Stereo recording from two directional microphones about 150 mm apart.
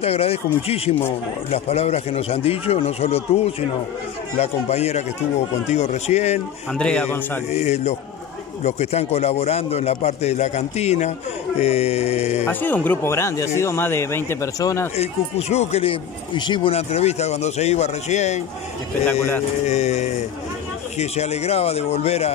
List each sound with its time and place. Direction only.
0.0 s a man's voice: 40° left (ahead or behind)
6.7 s speech: 5° left (ahead or behind)
7.5 s speech: 45° left (ahead or behind)
12.4 s speech: 15° left (ahead or behind)
15.0 s speech: 45° left (ahead or behind)
19.6 s speech: 50° left (ahead or behind)